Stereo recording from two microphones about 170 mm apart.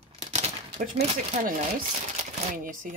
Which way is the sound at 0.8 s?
50° right (ahead or behind).